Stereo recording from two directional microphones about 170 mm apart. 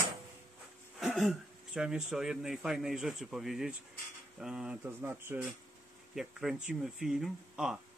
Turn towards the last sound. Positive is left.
turn(degrees=-5)  # may be behind; listen again after turning